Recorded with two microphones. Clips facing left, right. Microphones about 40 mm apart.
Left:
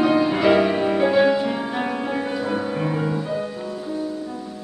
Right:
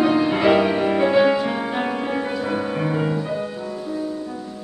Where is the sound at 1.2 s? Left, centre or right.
Right.